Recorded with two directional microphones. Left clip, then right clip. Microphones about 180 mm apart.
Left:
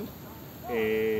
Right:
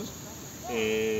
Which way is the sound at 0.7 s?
15° right (ahead or behind).